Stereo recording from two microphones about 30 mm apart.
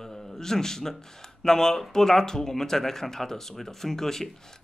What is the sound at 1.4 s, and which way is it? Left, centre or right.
Speech, centre.